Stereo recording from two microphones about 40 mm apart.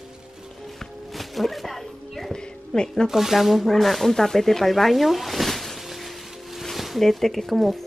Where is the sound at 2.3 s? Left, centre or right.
Centre.